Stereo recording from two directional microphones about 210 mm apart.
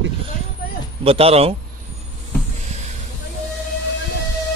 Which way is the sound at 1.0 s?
30° right (ahead or behind).